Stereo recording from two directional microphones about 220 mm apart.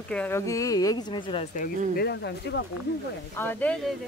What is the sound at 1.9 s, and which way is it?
Speech, 50° left (ahead or behind).